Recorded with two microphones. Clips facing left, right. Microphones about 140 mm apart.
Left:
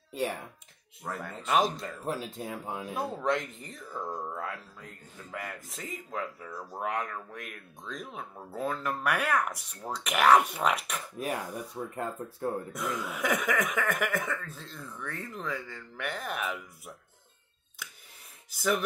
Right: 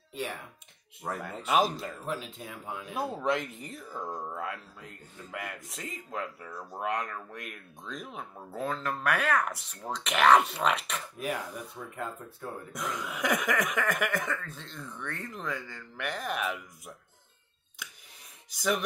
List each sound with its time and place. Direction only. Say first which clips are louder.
1.0 s speech: right 1 dB; 5° right (ahead or behind)
2.0 s speech: left 5 dB; 40° left (ahead or behind)
2.9 s speech: even; 5° right (ahead or behind)
11.1 s speech: left 1 dB; 40° left (ahead or behind)
11.8 s speech: left 5 dB; 25° left (ahead or behind)
12.7 s speech: left 2 dB; centre (ahead or behind)
18.5 s speech: left 1 dB; centre (ahead or behind)